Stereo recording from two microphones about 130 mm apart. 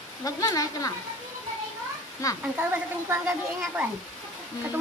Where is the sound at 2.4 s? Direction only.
10° right (ahead or behind).